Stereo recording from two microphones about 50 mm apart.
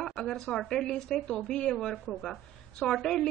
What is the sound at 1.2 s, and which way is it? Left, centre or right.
A woman's voice, centre.